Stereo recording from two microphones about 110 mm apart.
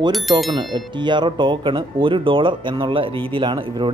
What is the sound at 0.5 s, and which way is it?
Speech, 45° right (ahead or behind).